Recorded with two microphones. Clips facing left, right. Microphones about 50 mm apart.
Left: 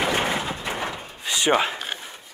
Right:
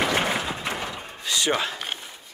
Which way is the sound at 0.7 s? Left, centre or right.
Left.